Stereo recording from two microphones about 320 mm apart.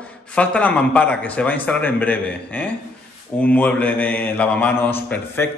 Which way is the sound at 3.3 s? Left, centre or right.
Centre.